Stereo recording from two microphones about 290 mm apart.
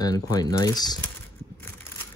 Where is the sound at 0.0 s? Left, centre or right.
Centre.